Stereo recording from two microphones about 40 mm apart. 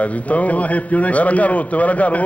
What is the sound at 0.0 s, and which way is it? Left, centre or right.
A man's voice, left.